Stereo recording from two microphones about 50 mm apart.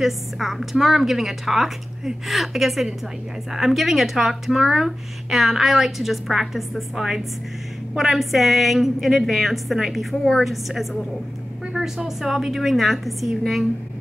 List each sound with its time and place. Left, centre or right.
0.0 s speech: centre
11.7 s a sound: centre
12.2 s speech: centre